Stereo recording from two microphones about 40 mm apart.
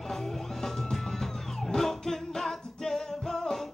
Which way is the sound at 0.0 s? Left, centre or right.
Centre.